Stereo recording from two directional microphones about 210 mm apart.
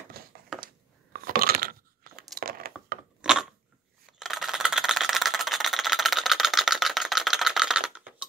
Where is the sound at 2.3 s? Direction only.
45° right (ahead or behind).